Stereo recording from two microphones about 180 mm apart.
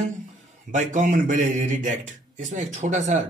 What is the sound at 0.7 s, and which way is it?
Speech, 45° right (ahead or behind).